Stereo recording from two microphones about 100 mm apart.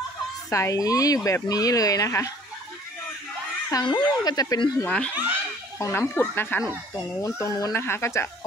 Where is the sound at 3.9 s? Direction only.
45° left (ahead or behind).